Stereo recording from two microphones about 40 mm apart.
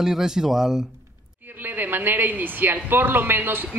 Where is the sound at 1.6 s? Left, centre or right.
Right.